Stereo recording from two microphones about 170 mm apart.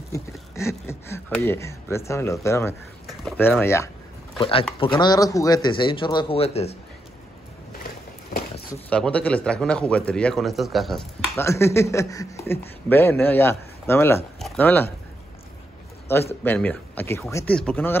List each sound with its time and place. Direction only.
0.6 s speech: 15° left (ahead or behind)
4.4 s speech: 30° left (ahead or behind)
5.0 s a man's voice: 20° left (ahead or behind); by 6.8 s 40° left (ahead or behind)
8.9 s speech: 5° left (ahead or behind)
11.3 s speech: 15° left (ahead or behind)
16.1 s speech: 15° left (ahead or behind)